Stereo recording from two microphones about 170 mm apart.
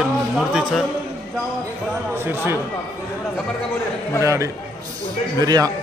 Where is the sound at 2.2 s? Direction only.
15° right (ahead or behind).